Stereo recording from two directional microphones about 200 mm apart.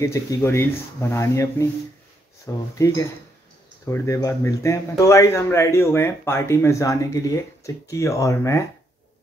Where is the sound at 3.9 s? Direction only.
15° left (ahead or behind).